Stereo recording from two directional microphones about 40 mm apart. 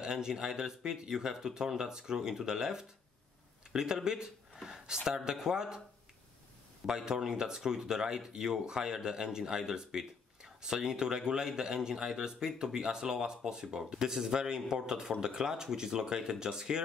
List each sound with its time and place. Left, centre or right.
0.0 s speech: centre
6.9 s speech: centre